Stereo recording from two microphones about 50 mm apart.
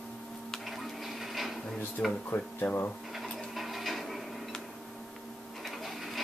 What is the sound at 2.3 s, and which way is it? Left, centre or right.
Speech, left.